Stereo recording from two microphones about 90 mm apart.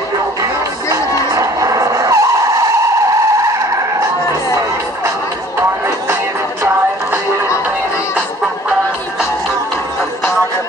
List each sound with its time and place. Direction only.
0.4 s music: 40° right (ahead or behind)